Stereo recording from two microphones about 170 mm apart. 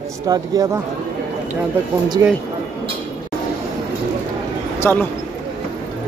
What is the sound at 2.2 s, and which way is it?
Speech, 15° right (ahead or behind).